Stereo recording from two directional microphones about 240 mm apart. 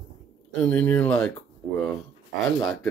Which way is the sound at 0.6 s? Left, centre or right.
Centre.